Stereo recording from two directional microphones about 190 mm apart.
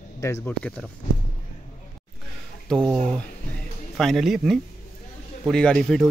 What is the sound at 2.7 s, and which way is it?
A man's voice, 5° left (ahead or behind).